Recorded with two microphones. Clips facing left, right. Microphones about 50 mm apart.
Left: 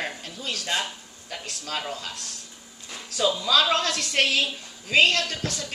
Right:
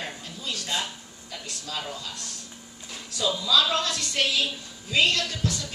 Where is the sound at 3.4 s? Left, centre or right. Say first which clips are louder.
Even; left.